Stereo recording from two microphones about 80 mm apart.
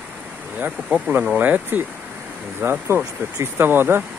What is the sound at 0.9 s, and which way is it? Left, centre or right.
Speech, right.